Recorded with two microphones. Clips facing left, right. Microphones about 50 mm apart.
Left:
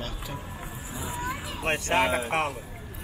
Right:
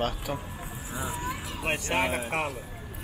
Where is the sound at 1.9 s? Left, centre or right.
Left.